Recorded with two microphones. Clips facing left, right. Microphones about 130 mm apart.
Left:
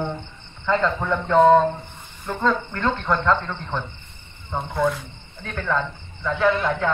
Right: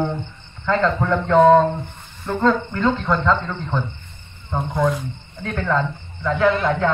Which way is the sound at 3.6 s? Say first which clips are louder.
Right 4 dB; 10° right (ahead or behind).